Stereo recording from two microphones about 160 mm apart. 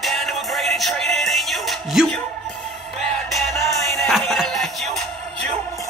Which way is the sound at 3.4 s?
45° right (ahead or behind).